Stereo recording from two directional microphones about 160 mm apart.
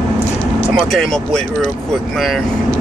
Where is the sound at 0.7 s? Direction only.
Centre (ahead or behind).